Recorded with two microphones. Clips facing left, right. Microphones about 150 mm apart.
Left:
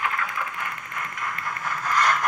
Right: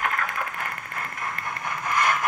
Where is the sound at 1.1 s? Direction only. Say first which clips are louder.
Left 1 dB; 30° right (ahead or behind); by 2.2 s 10° right (ahead or behind).